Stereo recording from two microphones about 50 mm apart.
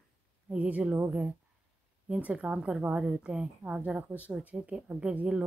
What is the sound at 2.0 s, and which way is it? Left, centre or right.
A woman's voice, right.